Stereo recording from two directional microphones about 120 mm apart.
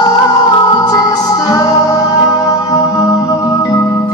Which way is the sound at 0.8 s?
35° left (ahead or behind).